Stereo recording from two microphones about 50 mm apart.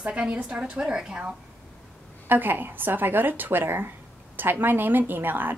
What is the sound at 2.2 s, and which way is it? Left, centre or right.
A woman's voice, right.